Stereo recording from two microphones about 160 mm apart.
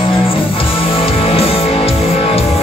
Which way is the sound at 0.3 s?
35° left (ahead or behind).